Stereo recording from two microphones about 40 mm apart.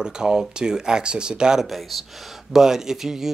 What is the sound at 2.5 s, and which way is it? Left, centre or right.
Speech, centre.